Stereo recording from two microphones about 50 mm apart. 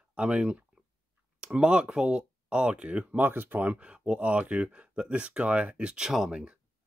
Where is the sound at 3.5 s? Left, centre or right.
Right.